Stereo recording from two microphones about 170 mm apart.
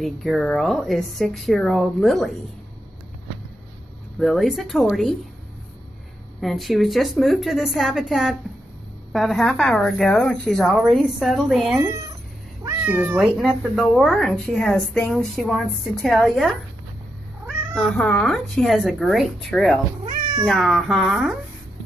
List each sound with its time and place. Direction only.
0.0 s speech: centre (ahead or behind)
4.2 s speech: centre (ahead or behind)
6.4 s speech: centre (ahead or behind)
12.8 s speech: 10° right (ahead or behind)
17.7 s speech: 5° left (ahead or behind)